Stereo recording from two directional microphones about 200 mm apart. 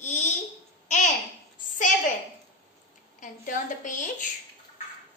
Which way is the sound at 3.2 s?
40° left (ahead or behind).